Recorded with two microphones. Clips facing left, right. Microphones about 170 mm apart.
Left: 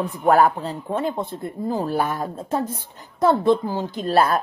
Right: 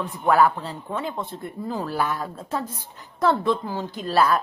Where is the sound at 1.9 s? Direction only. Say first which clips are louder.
Left 2 dB; 45° left (ahead or behind).